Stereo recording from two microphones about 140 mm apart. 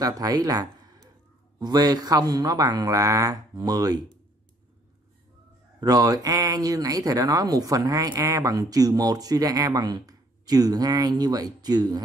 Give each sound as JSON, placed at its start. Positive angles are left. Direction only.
{"t": 0.0, "sound": "speech", "side_deg": -25}
{"t": 5.8, "sound": "speech", "side_deg": -25}